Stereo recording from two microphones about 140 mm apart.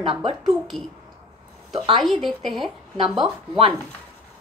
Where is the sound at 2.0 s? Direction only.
Centre (ahead or behind).